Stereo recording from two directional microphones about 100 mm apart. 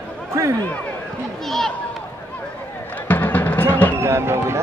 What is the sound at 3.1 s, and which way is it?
Music, 15° left (ahead or behind).